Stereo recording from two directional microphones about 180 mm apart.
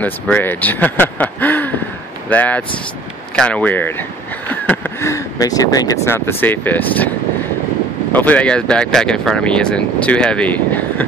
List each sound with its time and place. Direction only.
0.0 s speech: 10° left (ahead or behind)
8.1 s speech: 10° left (ahead or behind)